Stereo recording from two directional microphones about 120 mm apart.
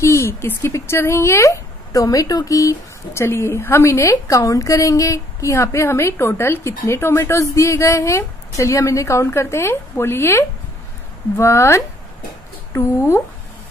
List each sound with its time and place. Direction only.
0.0 s a woman's voice: 25° left (ahead or behind)